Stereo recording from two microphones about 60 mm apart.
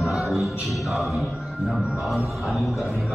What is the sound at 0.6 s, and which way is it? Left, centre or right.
A man's voice, centre.